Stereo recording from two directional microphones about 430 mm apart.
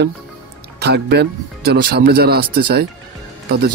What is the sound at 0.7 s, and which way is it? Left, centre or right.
Speech, right.